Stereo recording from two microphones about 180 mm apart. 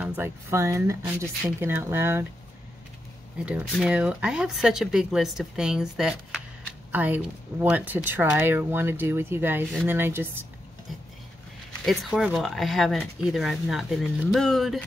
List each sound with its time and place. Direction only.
0.0 s speech: 10° right (ahead or behind)
3.3 s speech: 5° right (ahead or behind)
11.8 s speech: centre (ahead or behind)